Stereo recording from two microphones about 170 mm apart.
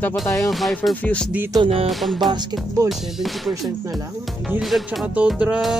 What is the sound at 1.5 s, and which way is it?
Speech, 30° right (ahead or behind).